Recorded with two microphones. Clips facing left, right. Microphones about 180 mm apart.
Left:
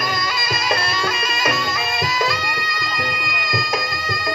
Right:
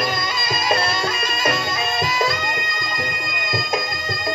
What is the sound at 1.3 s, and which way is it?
Music, 50° right (ahead or behind).